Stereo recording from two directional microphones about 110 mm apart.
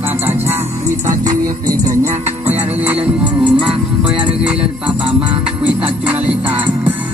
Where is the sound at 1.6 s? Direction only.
30° right (ahead or behind).